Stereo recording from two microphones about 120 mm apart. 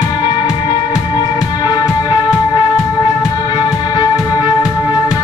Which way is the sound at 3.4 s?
35° left (ahead or behind).